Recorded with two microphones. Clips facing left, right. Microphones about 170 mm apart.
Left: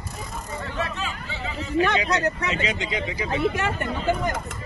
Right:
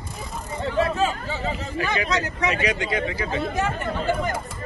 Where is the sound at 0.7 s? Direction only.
35° right (ahead or behind).